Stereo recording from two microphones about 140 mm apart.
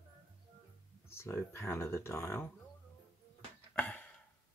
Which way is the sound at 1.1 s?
20° left (ahead or behind).